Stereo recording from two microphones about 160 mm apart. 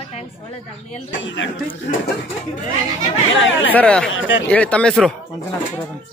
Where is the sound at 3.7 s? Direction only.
5° left (ahead or behind).